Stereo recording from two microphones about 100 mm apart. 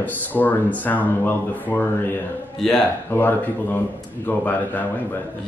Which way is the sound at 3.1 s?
20° left (ahead or behind).